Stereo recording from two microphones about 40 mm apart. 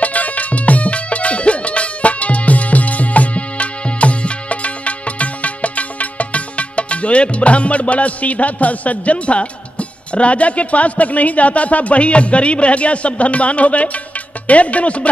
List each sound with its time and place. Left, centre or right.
0.0 s music: left
14.5 s speech: left